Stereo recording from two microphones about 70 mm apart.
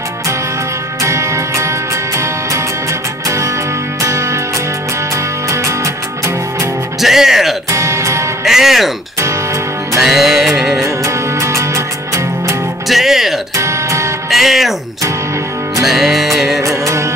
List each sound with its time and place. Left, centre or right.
1.0 s music: right
7.0 s music: centre
7.7 s music: right
8.5 s music: centre
10.0 s music: centre
11.4 s music: right
12.8 s music: centre
13.6 s music: right
14.3 s music: centre
15.8 s music: centre
16.6 s music: right